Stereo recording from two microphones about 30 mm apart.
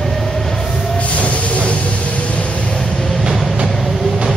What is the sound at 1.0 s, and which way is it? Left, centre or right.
Vehicle, left.